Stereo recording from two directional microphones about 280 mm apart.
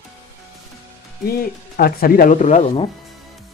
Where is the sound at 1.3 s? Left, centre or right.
Left.